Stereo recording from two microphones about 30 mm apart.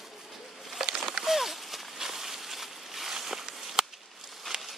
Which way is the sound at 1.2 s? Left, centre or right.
Centre.